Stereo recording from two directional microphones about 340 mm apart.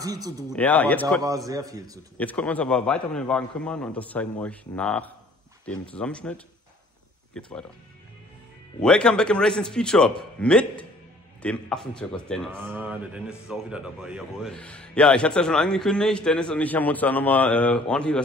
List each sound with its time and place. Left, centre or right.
0.0 s speech: centre
0.5 s a man's voice: centre
1.5 s speech: centre
2.1 s a man's voice: centre
8.8 s a man's voice: centre